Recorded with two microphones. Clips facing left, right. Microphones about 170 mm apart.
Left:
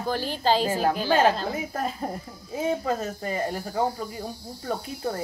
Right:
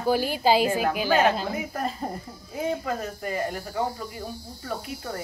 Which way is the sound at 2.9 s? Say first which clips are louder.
Left 2 dB; 30° left (ahead or behind).